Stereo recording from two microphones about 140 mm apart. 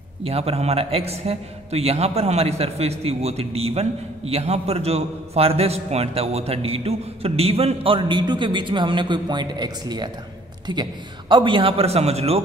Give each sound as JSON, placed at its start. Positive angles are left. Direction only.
{"t": 0.2, "sound": "a man's voice", "side_deg": -45}